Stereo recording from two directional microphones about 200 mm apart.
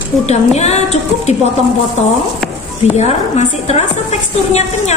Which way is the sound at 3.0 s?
35° left (ahead or behind).